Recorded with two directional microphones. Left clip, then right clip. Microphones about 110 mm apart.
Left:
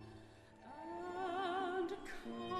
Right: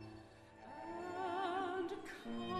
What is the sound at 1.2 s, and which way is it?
Music, 5° left (ahead or behind).